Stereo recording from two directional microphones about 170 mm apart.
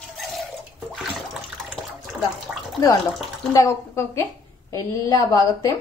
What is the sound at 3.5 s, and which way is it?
A woman's voice, 15° left (ahead or behind).